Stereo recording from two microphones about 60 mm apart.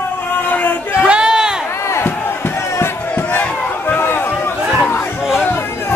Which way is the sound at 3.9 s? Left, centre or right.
Left.